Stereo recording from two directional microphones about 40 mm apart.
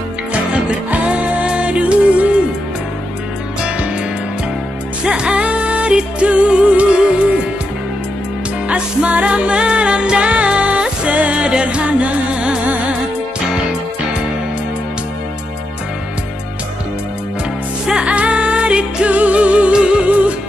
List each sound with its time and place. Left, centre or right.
1.0 s music: right
5.0 s music: right
8.6 s music: right
12.6 s music: right
18.0 s music: right
20.1 s music: right